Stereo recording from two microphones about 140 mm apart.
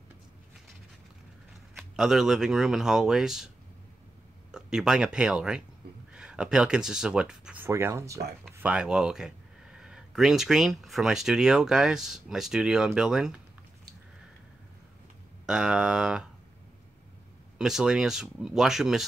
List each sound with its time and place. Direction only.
1.8 s speech: 5° right (ahead or behind)
4.5 s speech: 5° right (ahead or behind); by 8.2 s 20° right (ahead or behind)
8.5 s speech: 10° right (ahead or behind)
15.4 s speech: 5° right (ahead or behind)
17.6 s speech: 5° right (ahead or behind)